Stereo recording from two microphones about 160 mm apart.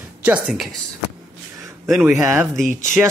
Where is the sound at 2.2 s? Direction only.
15° right (ahead or behind).